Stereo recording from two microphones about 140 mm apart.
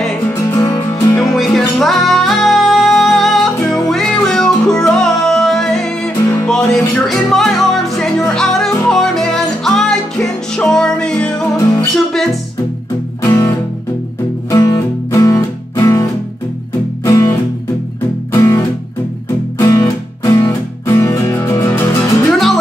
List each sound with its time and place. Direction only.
0.3 s music: 20° left (ahead or behind)
1.3 s music: centre (ahead or behind)
11.5 s music: 25° left (ahead or behind)
11.9 s music: 5° left (ahead or behind)
13.2 s music: 20° left (ahead or behind)
19.6 s music: 25° left (ahead or behind)